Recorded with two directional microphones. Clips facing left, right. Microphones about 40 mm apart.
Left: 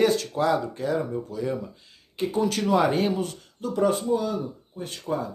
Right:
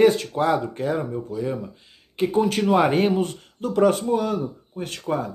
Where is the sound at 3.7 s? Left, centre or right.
Right.